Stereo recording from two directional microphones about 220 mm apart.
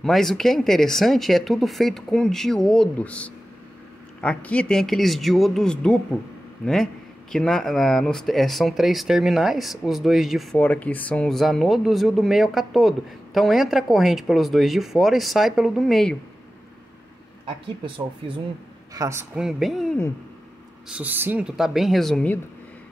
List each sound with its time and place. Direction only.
0.0 s speech: centre (ahead or behind)
17.5 s speech: 25° right (ahead or behind)
18.9 s speech: 10° right (ahead or behind)
20.9 s speech: 10° right (ahead or behind)